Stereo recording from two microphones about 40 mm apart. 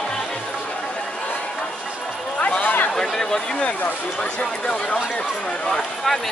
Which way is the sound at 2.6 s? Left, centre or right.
Left.